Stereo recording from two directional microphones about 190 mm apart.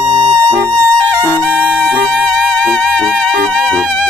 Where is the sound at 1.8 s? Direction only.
5° left (ahead or behind).